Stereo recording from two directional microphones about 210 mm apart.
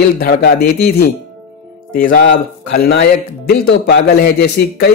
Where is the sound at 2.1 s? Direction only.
55° left (ahead or behind).